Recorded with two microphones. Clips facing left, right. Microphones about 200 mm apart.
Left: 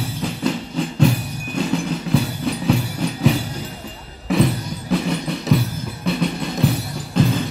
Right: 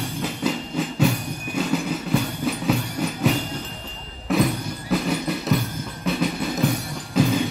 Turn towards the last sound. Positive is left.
turn(degrees=-5)  # may be behind; listen again after turning